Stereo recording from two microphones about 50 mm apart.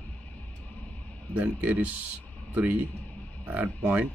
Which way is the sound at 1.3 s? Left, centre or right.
Right.